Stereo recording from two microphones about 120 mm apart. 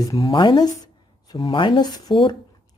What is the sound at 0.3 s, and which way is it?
Speech, 40° left (ahead or behind).